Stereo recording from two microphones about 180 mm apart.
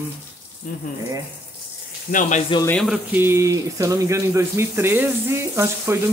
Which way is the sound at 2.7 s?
5° left (ahead or behind).